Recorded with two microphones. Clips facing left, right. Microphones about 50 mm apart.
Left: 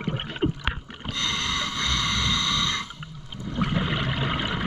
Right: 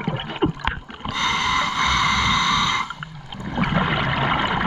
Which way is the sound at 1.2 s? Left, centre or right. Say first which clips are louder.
Right 8 dB; right.